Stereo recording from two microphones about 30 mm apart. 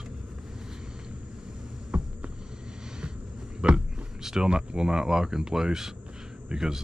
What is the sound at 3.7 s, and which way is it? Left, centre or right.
Speech, right.